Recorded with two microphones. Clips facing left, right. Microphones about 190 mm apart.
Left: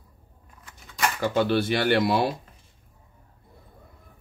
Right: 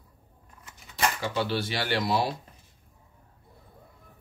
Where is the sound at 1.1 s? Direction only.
50° left (ahead or behind).